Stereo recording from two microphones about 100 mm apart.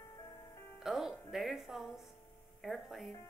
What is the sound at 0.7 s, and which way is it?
Music, 5° right (ahead or behind).